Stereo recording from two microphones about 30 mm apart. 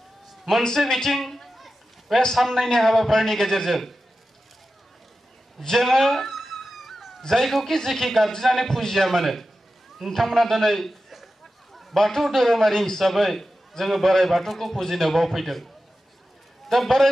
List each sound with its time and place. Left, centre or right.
0.7 s a man's voice: centre
1.1 s a sound: centre
2.3 s a man's voice: centre
5.6 s a man's voice: centre
5.9 s a sound: centre
7.2 s a man's voice: centre
11.7 s a sound: centre
12.2 s a man's voice: centre
13.0 s a man's voice: centre
16.6 s a man's voice: centre